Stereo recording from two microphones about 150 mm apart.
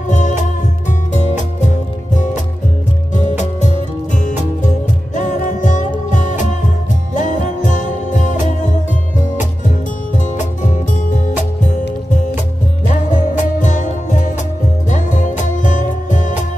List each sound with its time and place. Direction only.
0.1 s music: 55° left (ahead or behind)
12.9 s music: 55° left (ahead or behind)